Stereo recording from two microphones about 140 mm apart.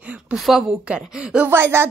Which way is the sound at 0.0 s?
10° right (ahead or behind).